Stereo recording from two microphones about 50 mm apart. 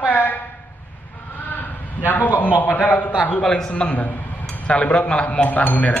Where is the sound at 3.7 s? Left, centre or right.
Left.